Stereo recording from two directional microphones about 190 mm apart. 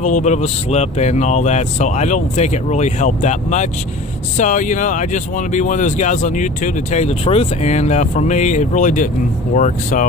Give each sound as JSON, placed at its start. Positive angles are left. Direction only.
{"t": 0.0, "sound": "speech", "side_deg": 40}